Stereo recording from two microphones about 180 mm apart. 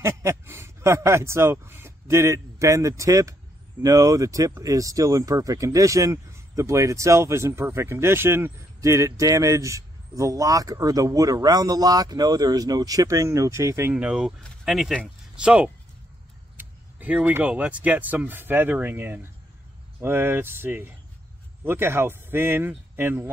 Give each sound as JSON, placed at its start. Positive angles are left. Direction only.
{"t": 0.0, "sound": "speech", "side_deg": -15}